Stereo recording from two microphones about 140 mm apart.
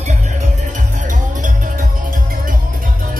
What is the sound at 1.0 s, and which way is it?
Music, 65° right (ahead or behind).